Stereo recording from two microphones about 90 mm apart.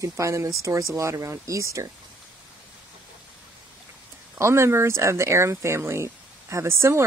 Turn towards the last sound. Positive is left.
turn(degrees=-35)  # may be behind; listen again after turning